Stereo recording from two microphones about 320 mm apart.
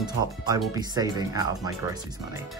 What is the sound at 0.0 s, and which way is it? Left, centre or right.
Speech, centre.